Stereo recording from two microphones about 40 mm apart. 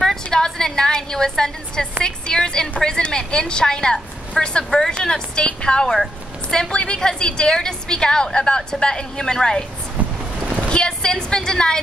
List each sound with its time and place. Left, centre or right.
0.0 s a woman's voice: centre
10.4 s a sound: right
10.7 s a woman's voice: left